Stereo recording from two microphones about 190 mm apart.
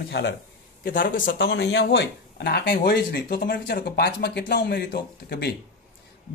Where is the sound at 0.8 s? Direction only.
45° left (ahead or behind).